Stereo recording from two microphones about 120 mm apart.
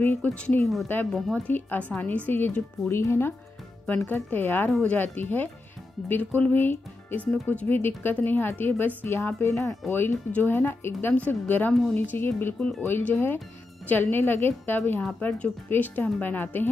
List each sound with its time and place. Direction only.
0.0 s speech: 20° left (ahead or behind)
0.5 s a woman's voice: 55° right (ahead or behind)
0.8 s speech: 15° left (ahead or behind)
12.5 s speech: 5° left (ahead or behind)
12.8 s speech: 15° left (ahead or behind)